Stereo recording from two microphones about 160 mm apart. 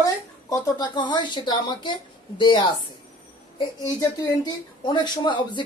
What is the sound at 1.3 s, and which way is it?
Speech, 30° left (ahead or behind).